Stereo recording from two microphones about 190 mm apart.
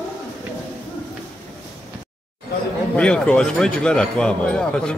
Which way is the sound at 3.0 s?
5° left (ahead or behind).